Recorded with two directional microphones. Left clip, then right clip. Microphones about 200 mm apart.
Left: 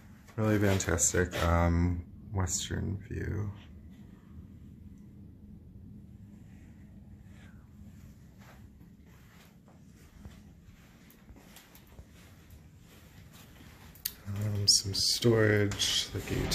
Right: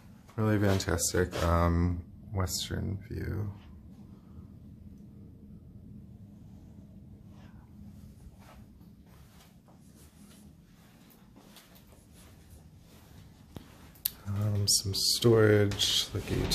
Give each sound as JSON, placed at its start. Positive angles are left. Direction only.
{"t": 0.4, "sound": "speech", "side_deg": -5}
{"t": 14.0, "sound": "speech", "side_deg": -15}